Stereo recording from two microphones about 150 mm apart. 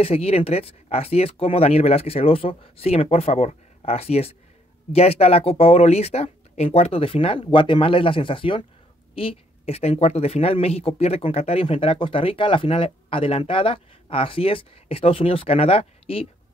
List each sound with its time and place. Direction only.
0.0 s speech: 40° left (ahead or behind)